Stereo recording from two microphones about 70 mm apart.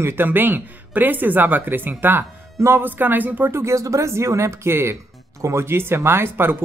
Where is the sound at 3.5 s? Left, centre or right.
Right.